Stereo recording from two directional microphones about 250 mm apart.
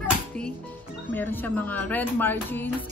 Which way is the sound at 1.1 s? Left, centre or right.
Centre.